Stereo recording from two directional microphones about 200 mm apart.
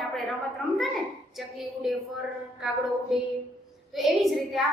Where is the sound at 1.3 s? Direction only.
Centre (ahead or behind).